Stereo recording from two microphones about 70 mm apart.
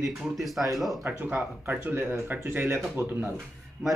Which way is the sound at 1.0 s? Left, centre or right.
Right.